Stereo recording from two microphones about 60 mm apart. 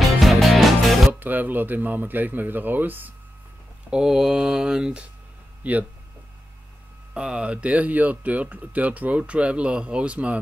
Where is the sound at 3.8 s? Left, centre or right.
Centre.